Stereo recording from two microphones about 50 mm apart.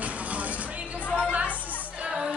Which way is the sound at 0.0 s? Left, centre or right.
Right.